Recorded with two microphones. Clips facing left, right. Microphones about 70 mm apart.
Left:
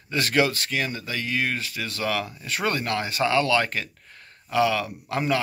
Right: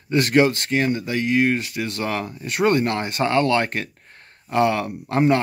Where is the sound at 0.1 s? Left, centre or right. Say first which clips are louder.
Right 5 dB; right.